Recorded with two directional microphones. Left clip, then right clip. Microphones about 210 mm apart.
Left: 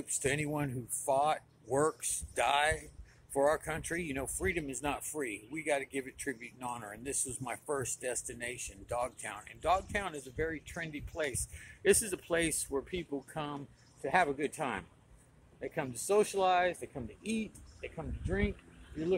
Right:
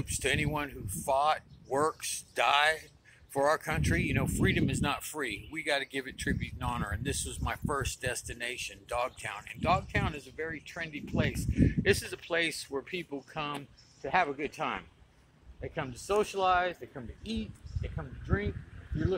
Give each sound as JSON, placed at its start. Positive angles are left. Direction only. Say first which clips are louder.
{"t": 0.0, "sound": "speech", "louder": "right 3 dB", "side_deg": 0}